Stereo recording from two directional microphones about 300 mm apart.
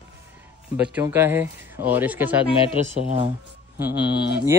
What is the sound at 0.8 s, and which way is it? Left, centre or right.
Speech, centre.